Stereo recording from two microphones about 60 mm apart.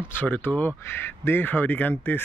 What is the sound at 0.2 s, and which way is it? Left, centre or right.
Speech, left.